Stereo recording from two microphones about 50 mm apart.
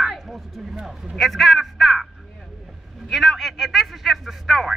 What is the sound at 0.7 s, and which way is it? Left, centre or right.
Speech, centre.